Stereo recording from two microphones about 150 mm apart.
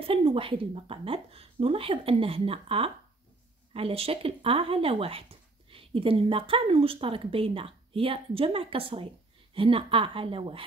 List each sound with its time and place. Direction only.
0.0 s speech: 40° right (ahead or behind)